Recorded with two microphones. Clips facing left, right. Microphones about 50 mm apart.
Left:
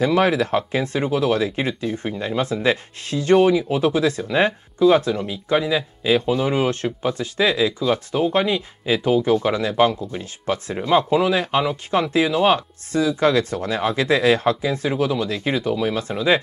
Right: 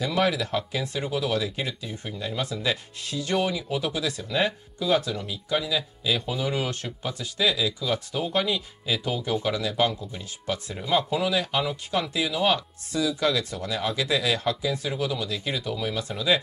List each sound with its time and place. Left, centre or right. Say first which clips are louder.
0.0 s speech: left 7 dB; left